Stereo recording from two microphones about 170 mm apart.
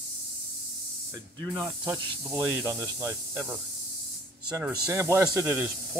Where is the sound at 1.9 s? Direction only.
15° right (ahead or behind).